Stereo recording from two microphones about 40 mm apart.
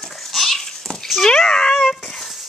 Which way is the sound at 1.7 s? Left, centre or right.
Centre.